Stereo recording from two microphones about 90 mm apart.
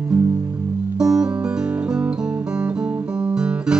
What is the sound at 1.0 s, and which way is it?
Music, 10° right (ahead or behind).